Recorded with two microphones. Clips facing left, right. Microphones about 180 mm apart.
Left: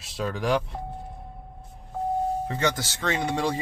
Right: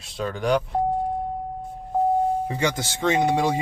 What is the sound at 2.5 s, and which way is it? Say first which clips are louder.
Speech: right 2 dB; 15° right (ahead or behind).